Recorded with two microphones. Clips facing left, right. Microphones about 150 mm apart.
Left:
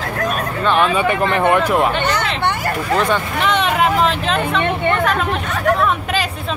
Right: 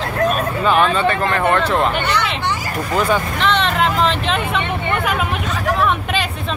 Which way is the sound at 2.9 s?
5° right (ahead or behind).